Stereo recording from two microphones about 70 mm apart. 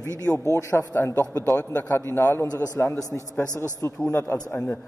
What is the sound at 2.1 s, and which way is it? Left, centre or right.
A man's voice, left.